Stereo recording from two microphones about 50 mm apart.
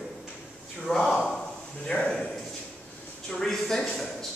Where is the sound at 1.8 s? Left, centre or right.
Centre.